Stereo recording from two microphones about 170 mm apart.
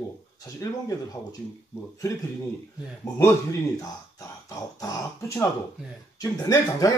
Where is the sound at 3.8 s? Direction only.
20° left (ahead or behind).